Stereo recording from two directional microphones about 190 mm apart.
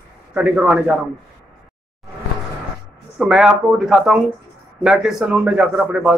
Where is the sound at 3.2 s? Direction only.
Centre (ahead or behind).